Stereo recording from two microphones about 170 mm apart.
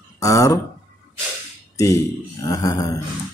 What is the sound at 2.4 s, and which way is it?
Speech, 20° left (ahead or behind).